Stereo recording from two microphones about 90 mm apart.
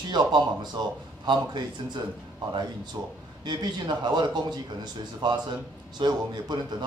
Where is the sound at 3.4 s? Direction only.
55° right (ahead or behind).